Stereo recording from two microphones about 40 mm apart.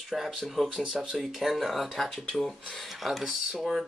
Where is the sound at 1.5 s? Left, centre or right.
Centre.